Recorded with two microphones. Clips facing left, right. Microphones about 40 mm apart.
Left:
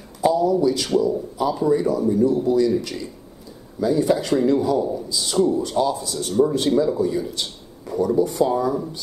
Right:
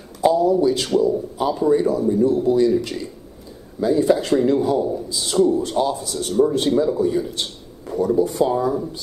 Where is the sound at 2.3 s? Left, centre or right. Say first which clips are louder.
Right 2 dB; right.